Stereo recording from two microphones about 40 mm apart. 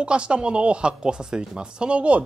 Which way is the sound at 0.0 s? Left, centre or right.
Right.